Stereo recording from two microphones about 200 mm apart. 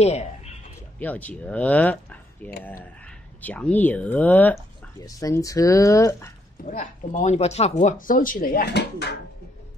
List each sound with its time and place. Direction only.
0.0 s speech: 30° left (ahead or behind)
0.9 s speech: 10° left (ahead or behind)
6.6 s speech: 35° left (ahead or behind)